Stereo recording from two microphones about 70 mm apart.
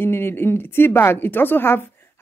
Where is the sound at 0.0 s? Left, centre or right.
Left.